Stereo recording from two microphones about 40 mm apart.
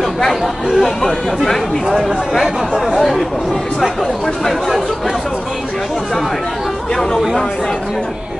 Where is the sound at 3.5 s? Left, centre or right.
Centre.